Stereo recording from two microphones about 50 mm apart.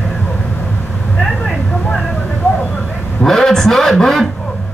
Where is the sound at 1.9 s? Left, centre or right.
Centre.